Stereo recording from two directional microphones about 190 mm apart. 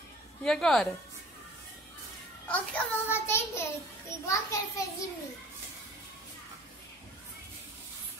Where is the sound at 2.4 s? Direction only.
5° left (ahead or behind).